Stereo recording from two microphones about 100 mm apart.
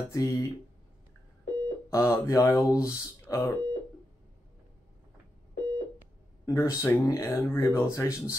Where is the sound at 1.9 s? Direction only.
30° left (ahead or behind).